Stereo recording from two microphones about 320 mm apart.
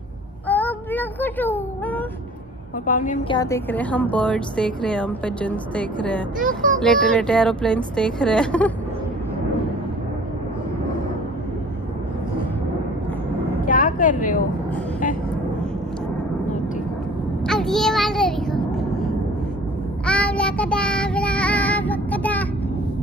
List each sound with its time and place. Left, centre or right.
0.5 s child singing: centre
2.9 s a woman's voice: left
3.3 s speech: centre
6.4 s speech: right
6.8 s speech: centre
13.7 s vehicle: left
17.5 s a sound: centre
20.1 s child singing: centre